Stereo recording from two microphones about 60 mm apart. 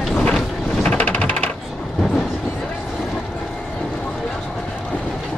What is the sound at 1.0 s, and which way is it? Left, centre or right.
Typewriter, left.